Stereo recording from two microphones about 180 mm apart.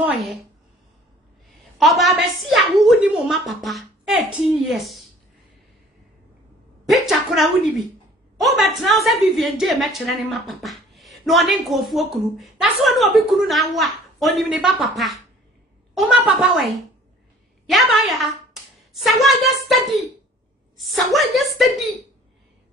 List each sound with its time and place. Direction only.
1.8 s a woman's voice: centre (ahead or behind)
6.9 s a woman's voice: centre (ahead or behind)